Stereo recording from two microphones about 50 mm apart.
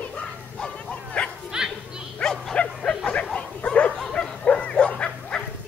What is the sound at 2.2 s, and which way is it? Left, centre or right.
Bow-wow, centre.